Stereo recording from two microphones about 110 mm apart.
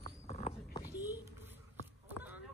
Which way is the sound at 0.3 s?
75° left (ahead or behind).